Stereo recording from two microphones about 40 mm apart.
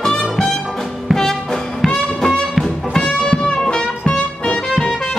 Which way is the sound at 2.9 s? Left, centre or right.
Left.